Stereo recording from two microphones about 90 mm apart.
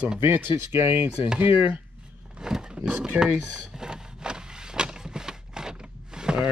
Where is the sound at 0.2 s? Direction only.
25° right (ahead or behind).